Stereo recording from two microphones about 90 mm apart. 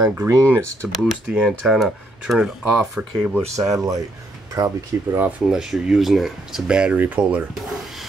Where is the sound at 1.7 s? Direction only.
Centre (ahead or behind).